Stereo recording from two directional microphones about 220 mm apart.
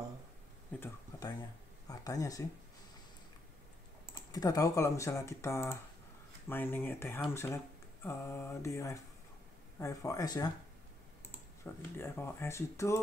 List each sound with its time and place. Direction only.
0.7 s speech: 10° left (ahead or behind)
4.3 s speech: 15° left (ahead or behind)
11.6 s speech: 10° left (ahead or behind)